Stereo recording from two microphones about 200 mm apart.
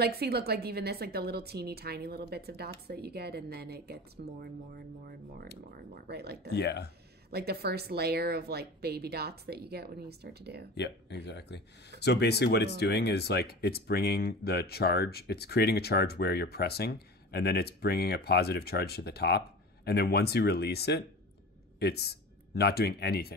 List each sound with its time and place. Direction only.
0.0 s a woman's voice: 50° right (ahead or behind)
6.5 s speech: 55° left (ahead or behind)
7.2 s a woman's voice: 55° right (ahead or behind)
10.7 s speech: 55° left (ahead or behind)